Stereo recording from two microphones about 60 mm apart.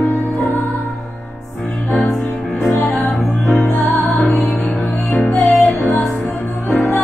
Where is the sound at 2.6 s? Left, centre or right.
Centre.